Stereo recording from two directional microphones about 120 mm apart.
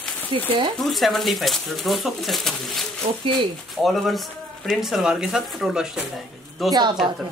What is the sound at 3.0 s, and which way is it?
Speech, 55° right (ahead or behind).